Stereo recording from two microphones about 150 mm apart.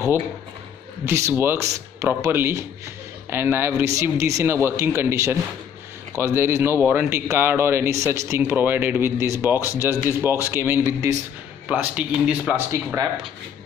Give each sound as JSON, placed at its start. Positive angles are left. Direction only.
{"t": 1.0, "sound": "speech", "side_deg": -15}
{"t": 9.6, "sound": "speech", "side_deg": 20}
{"t": 9.8, "sound": "a man's voice", "side_deg": -15}
{"t": 11.6, "sound": "speech", "side_deg": -10}